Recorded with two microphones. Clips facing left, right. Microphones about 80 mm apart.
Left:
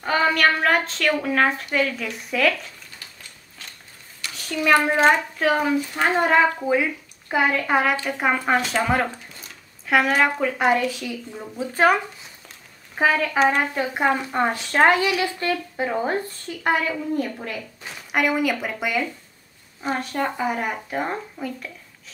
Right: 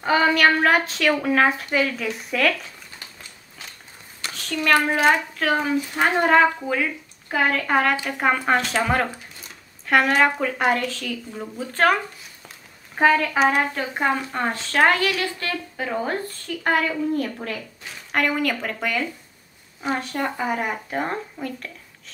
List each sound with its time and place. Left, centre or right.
0.0 s a woman's voice: centre
4.5 s a woman's voice: centre
6.6 s a woman's voice: centre
13.6 s a woman's voice: centre
19.8 s speech: centre
20.5 s a woman's voice: centre